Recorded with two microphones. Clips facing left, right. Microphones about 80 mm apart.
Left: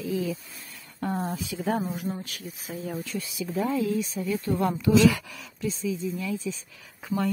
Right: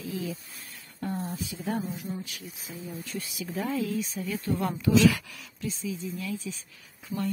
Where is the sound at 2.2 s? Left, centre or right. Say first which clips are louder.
Left 3 dB; left.